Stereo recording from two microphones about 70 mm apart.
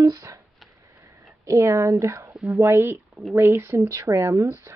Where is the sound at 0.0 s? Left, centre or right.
Right.